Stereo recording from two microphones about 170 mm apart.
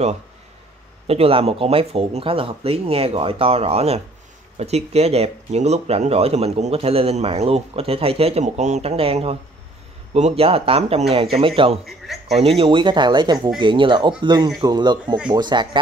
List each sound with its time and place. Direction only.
1.0 s speech: 35° right (ahead or behind)
11.8 s a man's voice: centre (ahead or behind)
12.4 s speech: 35° right (ahead or behind)